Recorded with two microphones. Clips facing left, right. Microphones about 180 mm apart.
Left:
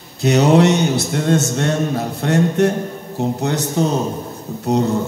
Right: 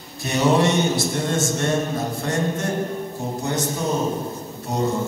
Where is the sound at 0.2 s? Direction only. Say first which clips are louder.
Left 6 dB; 75° left (ahead or behind).